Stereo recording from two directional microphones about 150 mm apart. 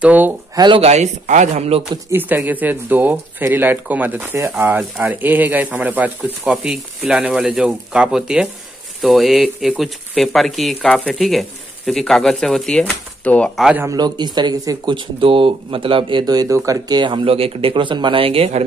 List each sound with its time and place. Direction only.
0.0 s speech: 10° right (ahead or behind)
0.6 s speech: 30° right (ahead or behind)
0.8 s speech: 50° right (ahead or behind)
2.0 s speech: 15° right (ahead or behind); by 13.5 s 10° left (ahead or behind)
13.6 s speech: 5° right (ahead or behind)
13.8 s speech: 30° right (ahead or behind)